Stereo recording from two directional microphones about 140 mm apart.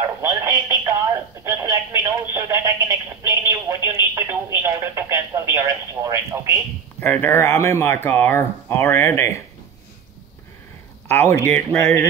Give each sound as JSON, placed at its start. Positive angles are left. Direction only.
{"t": 0.2, "sound": "radio", "side_deg": -20}
{"t": 7.0, "sound": "speech", "side_deg": 15}
{"t": 11.1, "sound": "speech", "side_deg": 15}